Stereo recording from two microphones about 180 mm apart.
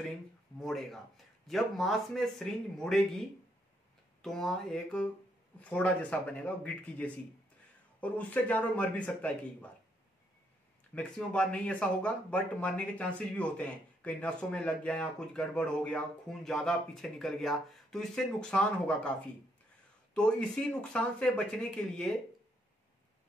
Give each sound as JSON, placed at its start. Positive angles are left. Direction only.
{"t": 0.6, "sound": "a man's voice", "side_deg": 0}
{"t": 11.0, "sound": "speech", "side_deg": 5}
{"t": 20.2, "sound": "speech", "side_deg": 5}